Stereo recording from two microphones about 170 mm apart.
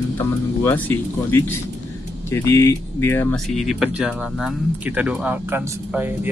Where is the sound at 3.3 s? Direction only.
Centre (ahead or behind).